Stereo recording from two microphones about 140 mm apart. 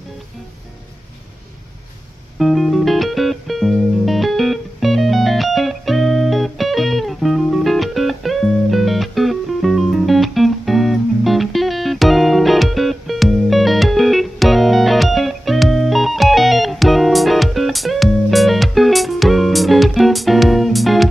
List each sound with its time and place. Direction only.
2.3 s music: centre (ahead or behind)